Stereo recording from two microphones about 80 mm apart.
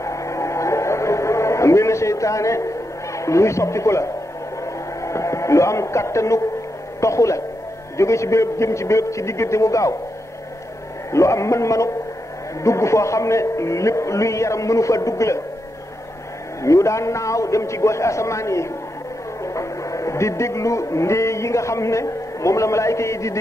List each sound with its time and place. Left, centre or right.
0.0 s a sound: left
3.2 s a man's voice: left
5.0 s music: left
7.0 s a man's voice: left
11.1 s a man's voice: left
16.6 s a man's voice: left